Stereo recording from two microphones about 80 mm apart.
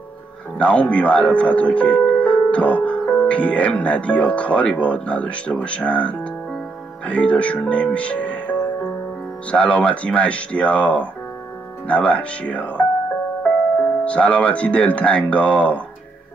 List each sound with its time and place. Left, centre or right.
0.6 s speech: centre
14.0 s speech: centre